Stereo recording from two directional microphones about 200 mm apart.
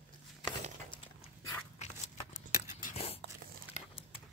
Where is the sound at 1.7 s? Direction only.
35° left (ahead or behind).